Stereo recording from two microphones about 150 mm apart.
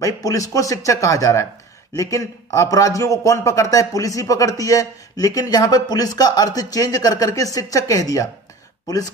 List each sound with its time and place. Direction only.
0.0 s speech: 20° left (ahead or behind)